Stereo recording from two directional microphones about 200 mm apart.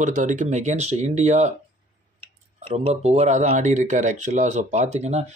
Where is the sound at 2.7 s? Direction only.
30° right (ahead or behind).